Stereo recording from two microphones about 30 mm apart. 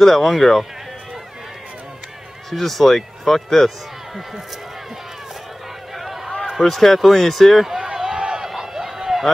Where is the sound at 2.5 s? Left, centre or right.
Centre.